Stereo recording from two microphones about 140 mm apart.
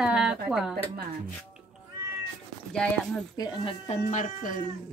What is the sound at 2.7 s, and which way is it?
Speech, 5° left (ahead or behind).